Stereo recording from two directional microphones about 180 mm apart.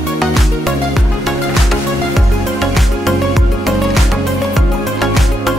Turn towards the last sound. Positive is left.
turn(degrees=0)  # may be behind; listen again after turning